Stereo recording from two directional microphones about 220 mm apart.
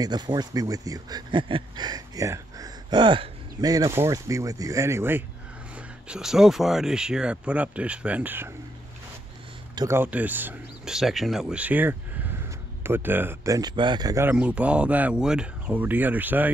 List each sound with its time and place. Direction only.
0.0 s speech: 20° right (ahead or behind)
9.8 s speech: 10° right (ahead or behind)